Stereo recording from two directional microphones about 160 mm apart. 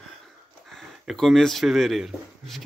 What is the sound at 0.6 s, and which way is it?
Speech, centre (ahead or behind).